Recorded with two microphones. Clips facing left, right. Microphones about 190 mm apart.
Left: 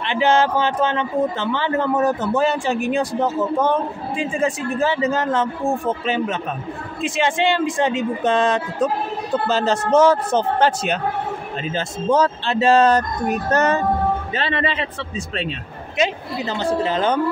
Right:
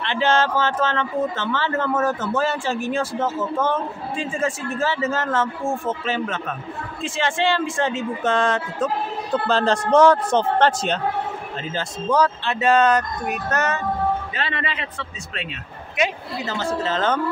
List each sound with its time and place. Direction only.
0.0 s speech: 15° left (ahead or behind)
9.5 s a man's voice: 5° left (ahead or behind)
11.6 s speech: 20° left (ahead or behind)
16.0 s speech: 20° left (ahead or behind)